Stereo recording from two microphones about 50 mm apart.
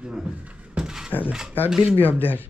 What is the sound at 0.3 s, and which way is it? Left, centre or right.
Speech, right.